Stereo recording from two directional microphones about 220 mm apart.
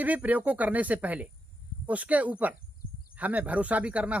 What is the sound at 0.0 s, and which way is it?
Speech, 5° right (ahead or behind).